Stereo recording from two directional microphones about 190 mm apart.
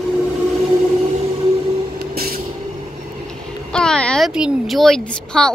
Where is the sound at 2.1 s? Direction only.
50° right (ahead or behind).